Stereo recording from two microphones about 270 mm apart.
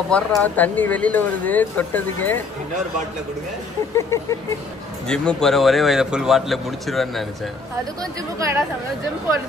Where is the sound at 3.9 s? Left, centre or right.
Centre.